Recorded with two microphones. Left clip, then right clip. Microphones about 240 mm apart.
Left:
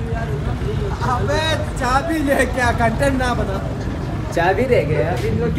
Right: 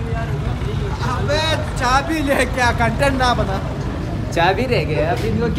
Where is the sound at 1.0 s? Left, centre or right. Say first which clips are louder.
Even; centre.